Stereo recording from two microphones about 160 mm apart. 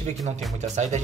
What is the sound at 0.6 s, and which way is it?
Speech, 50° right (ahead or behind).